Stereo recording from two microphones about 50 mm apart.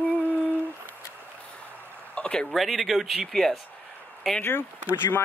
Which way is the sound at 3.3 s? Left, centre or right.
Centre.